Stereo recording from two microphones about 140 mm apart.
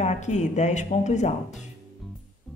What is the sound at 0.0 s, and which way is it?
Speech, 55° left (ahead or behind).